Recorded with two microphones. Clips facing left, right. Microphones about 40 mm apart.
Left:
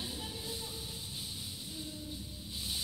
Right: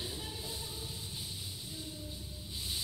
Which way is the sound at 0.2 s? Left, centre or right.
Centre.